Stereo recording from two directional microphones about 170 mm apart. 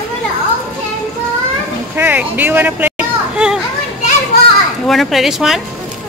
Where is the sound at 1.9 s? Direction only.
10° right (ahead or behind).